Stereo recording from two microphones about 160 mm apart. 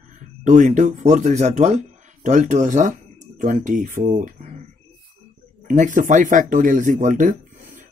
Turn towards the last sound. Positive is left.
turn(degrees=-55)  # may be behind; listen again after turning